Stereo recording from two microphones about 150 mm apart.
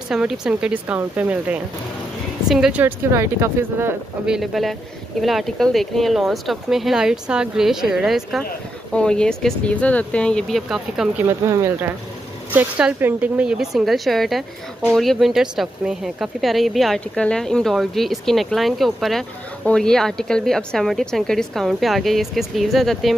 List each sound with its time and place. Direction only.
0.1 s speech: 5° right (ahead or behind)
4.3 s speech: centre (ahead or behind)
11.4 s speech: 20° right (ahead or behind); by 23.1 s centre (ahead or behind)